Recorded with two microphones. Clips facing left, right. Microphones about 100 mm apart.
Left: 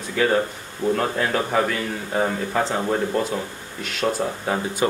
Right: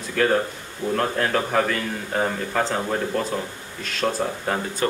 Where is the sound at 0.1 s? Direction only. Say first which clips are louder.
Even; 5° left (ahead or behind).